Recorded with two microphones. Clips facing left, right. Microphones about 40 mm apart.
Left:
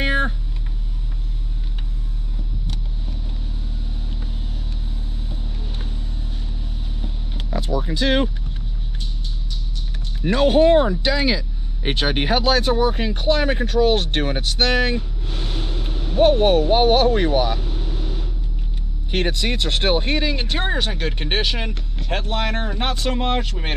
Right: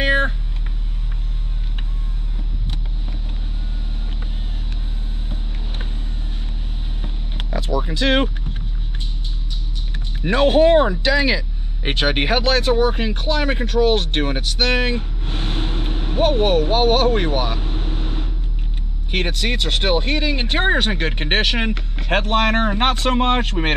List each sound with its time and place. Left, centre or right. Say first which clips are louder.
0.0 s a sound: right 3 dB; right
7.7 s speech: right 2 dB; right
10.2 s speech: right 1 dB; right
15.0 s vehicle: right 2 dB; right
16.2 s speech: left 2 dB; right
19.2 s speech: even; right
20.2 s speech: right 1 dB; right
20.4 s speech: right 5 dB; right